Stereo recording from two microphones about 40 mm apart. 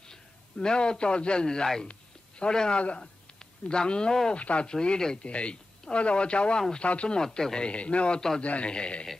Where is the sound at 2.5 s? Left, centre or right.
Centre.